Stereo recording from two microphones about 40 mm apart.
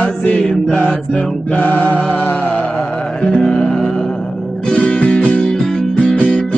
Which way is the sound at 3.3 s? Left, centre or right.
Left.